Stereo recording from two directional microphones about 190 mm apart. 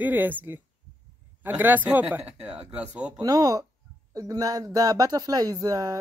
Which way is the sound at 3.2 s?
20° right (ahead or behind).